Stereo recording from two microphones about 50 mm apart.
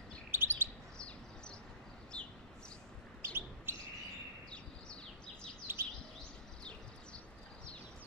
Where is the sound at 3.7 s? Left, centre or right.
Right.